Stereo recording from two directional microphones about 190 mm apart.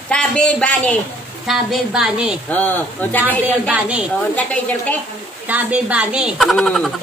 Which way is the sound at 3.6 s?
5° right (ahead or behind).